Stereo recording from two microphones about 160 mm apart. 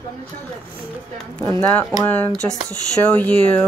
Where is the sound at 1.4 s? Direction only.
15° left (ahead or behind).